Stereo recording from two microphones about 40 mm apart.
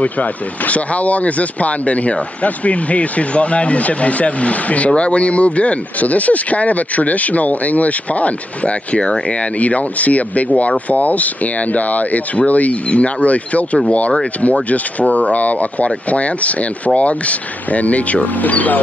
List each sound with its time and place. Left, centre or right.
0.0 s speech: left